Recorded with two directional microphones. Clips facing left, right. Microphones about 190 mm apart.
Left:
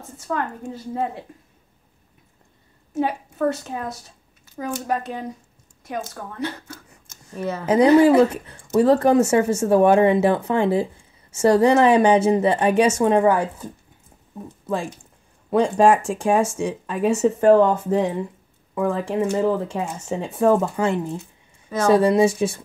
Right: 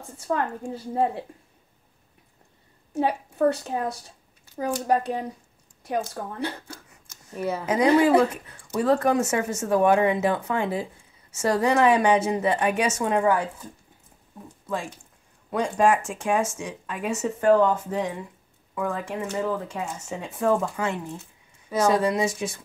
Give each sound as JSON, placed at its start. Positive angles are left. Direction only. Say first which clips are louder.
{"t": 0.2, "sound": "a woman's voice", "louder": "even", "side_deg": -30}
{"t": 2.9, "sound": "a woman's voice", "louder": "left 1 dB", "side_deg": -30}
{"t": 7.3, "sound": "speech", "louder": "left 1 dB", "side_deg": -10}
{"t": 7.6, "sound": "speech", "louder": "left 6 dB", "side_deg": 30}
{"t": 15.5, "sound": "speech", "louder": "left 5 dB", "side_deg": 30}